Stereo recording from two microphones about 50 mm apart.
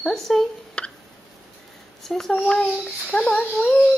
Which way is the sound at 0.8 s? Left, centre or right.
Left.